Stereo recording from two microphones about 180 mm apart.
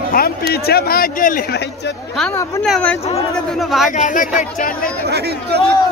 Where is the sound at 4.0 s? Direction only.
45° left (ahead or behind).